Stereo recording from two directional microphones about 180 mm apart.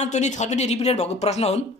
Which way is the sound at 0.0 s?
40° left (ahead or behind).